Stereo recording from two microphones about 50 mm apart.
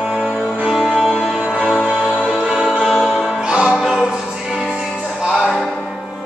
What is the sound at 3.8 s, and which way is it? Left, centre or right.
Music, centre.